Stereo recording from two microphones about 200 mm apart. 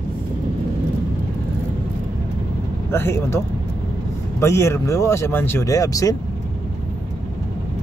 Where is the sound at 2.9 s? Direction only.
10° left (ahead or behind).